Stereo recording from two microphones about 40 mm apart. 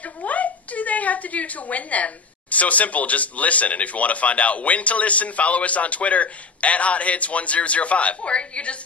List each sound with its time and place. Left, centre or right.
0.0 s a woman's voice: left